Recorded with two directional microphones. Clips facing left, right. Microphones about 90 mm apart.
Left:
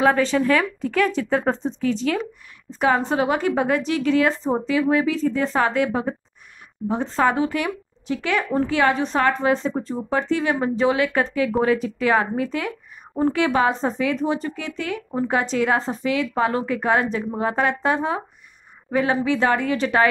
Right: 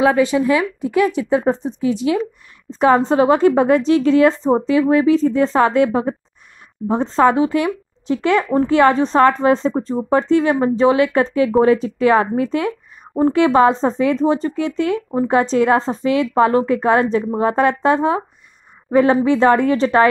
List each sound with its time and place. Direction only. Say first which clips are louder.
0.0 s a woman's voice: right 4 dB; 15° right (ahead or behind)
2.7 s speech: right 6 dB; 30° right (ahead or behind)